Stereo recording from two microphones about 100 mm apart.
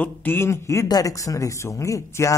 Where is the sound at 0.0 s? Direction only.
20° left (ahead or behind).